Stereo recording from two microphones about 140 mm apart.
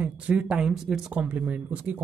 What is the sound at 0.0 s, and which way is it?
Speech, 10° right (ahead or behind).